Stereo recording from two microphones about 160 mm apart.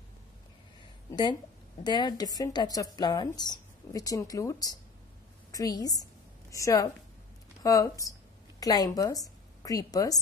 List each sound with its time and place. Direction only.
1.8 s a woman's voice: 25° left (ahead or behind)